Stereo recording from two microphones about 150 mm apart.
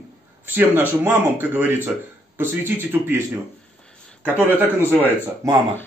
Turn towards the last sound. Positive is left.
turn(degrees=-20)  # may be behind; listen again after turning